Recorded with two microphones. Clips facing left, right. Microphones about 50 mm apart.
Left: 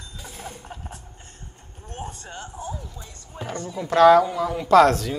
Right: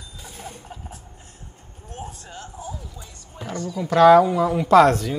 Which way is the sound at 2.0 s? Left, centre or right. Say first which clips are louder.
Left 1 dB; centre.